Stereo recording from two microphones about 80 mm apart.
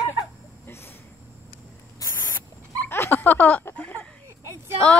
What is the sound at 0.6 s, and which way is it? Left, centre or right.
Vehicle, left.